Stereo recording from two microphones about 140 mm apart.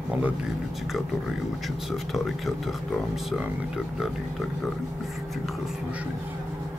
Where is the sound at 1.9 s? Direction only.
Centre (ahead or behind).